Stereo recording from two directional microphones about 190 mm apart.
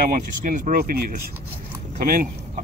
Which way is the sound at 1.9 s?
50° right (ahead or behind).